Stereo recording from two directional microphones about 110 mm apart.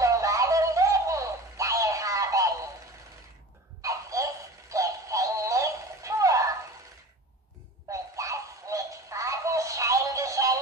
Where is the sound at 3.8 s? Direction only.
30° right (ahead or behind).